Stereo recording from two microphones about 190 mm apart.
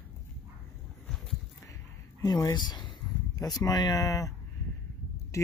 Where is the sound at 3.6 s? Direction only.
20° left (ahead or behind).